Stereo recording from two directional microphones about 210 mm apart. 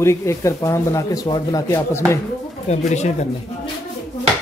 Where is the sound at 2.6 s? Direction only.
35° left (ahead or behind).